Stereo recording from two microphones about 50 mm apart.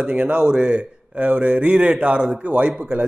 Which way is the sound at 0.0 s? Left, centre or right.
Right.